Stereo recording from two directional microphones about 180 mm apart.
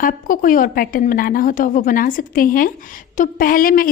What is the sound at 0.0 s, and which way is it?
A woman's voice, 50° left (ahead or behind).